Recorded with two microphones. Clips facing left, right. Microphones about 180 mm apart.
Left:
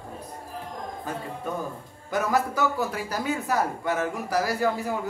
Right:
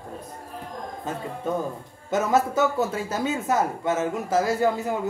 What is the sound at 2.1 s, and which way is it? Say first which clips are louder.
Speech: right 3 dB; 25° right (ahead or behind).